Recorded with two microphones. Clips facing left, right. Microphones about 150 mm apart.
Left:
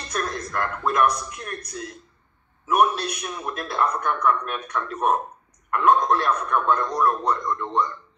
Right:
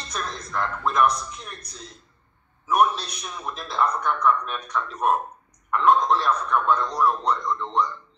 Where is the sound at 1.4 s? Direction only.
60° left (ahead or behind).